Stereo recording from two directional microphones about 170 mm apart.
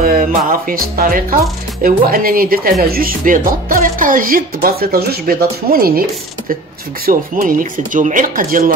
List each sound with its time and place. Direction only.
0.0 s music: 60° right (ahead or behind)
0.5 s speech: 55° right (ahead or behind)
7.1 s speech: 55° right (ahead or behind)